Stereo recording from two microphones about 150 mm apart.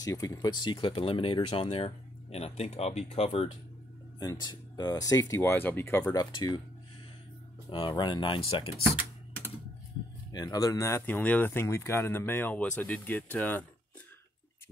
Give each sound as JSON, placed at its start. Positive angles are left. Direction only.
{"t": 0.0, "sound": "speech", "side_deg": 25}
{"t": 4.2, "sound": "speech", "side_deg": 30}
{"t": 7.7, "sound": "speech", "side_deg": 35}
{"t": 10.3, "sound": "speech", "side_deg": 25}